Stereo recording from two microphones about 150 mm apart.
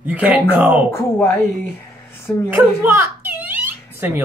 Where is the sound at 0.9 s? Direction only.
15° left (ahead or behind).